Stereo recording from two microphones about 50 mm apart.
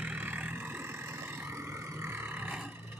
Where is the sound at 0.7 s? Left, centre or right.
Right.